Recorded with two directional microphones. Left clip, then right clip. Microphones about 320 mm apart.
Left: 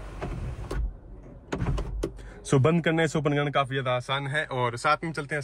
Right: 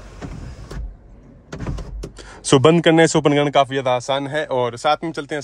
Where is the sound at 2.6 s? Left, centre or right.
Right.